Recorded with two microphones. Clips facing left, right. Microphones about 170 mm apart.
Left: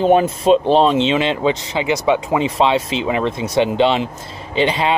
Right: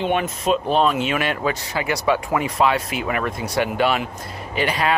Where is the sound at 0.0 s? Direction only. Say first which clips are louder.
Left 8 dB; 30° left (ahead or behind).